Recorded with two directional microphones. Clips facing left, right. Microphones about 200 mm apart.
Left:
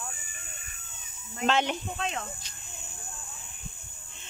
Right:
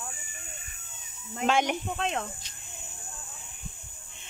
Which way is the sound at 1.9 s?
60° right (ahead or behind).